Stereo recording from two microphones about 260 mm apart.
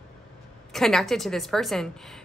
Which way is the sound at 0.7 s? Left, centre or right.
Centre.